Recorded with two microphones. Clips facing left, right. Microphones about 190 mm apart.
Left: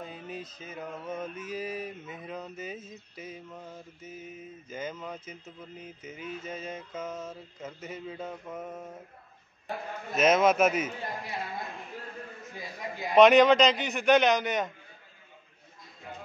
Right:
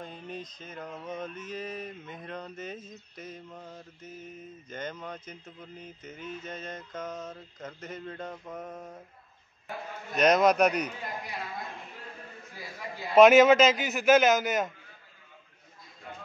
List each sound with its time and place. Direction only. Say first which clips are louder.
0.0 s mantra: even; 5° left (ahead or behind)
10.1 s a man's voice: even; centre (ahead or behind)
12.5 s mantra: left 2 dB; 20° left (ahead or behind)
13.1 s a man's voice: right 1 dB; 5° right (ahead or behind)